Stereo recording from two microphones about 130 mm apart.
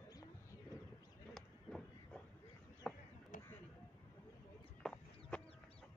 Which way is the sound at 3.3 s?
80° left.